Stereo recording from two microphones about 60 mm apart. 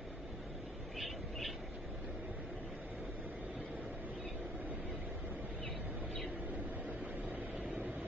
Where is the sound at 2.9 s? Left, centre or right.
Right.